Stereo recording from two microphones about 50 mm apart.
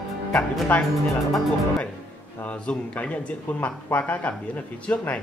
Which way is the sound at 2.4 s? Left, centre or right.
Left.